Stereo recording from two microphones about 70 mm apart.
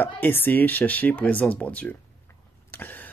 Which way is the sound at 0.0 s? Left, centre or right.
Left.